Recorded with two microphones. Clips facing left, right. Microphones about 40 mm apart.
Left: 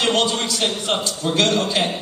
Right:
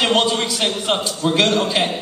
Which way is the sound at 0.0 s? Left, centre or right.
Centre.